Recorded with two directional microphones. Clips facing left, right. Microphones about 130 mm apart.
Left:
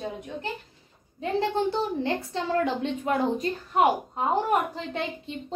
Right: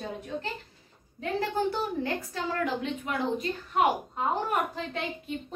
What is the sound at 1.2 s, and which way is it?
A woman's voice, 25° left (ahead or behind).